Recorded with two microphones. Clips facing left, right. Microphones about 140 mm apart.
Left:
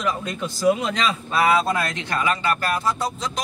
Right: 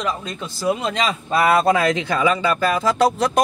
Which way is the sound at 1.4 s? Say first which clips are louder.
Right 3 dB; 55° right (ahead or behind).